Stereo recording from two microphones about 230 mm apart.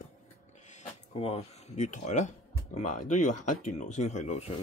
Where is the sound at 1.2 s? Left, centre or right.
Left.